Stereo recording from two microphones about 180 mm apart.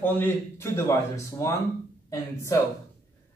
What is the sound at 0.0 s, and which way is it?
A man's voice, 10° left (ahead or behind).